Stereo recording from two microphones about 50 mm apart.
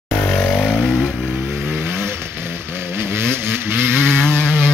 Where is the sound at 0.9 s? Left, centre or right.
Right.